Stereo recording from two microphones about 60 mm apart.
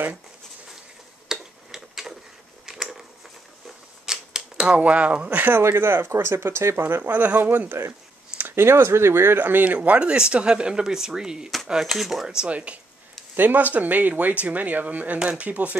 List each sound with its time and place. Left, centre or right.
1.3 s tick-tock: centre
2.6 s a sound: centre
4.0 s camera: centre
5.4 s speech: right
7.1 s speech: right
9.8 s speech: centre
12.3 s speech: centre
13.4 s speech: right